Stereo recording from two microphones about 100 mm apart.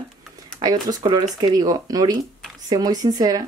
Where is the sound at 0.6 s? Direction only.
45° right (ahead or behind).